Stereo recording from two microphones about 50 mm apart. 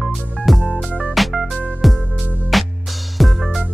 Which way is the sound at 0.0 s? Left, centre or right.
Centre.